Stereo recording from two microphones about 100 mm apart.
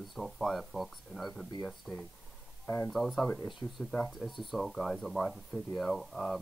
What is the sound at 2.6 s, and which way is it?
Speech, 15° left (ahead or behind).